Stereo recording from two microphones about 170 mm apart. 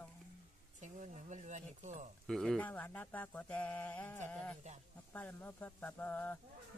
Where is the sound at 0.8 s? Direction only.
45° right (ahead or behind).